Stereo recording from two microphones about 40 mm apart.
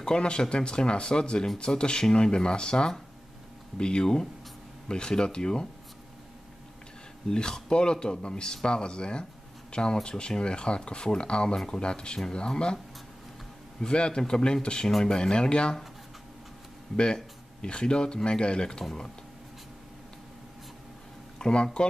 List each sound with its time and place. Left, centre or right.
0.0 s speech: left
7.2 s speech: centre
13.7 s speech: left
16.9 s speech: left
21.4 s speech: left